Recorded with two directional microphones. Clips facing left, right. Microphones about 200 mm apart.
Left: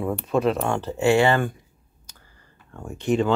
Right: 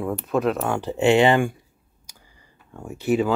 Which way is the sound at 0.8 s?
20° right (ahead or behind).